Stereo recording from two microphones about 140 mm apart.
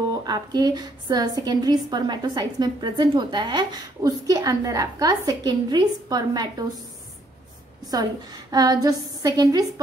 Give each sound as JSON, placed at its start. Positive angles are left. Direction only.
{"t": 0.1, "sound": "a woman's voice", "side_deg": -30}
{"t": 7.9, "sound": "a woman's voice", "side_deg": -30}